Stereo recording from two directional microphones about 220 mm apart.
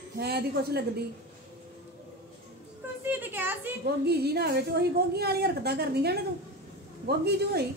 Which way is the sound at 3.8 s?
45° right (ahead or behind).